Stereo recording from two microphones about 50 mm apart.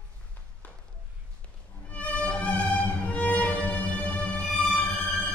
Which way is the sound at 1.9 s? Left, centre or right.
Left.